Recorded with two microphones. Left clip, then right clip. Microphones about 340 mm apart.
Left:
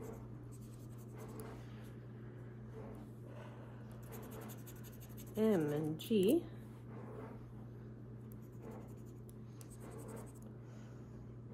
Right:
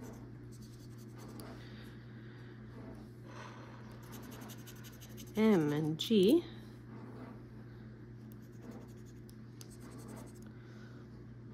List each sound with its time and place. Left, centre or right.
5.3 s speech: right